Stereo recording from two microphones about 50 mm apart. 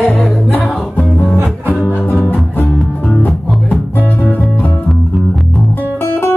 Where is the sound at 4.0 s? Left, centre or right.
Left.